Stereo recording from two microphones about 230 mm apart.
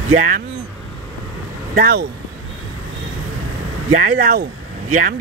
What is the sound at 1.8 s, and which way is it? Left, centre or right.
Speech, right.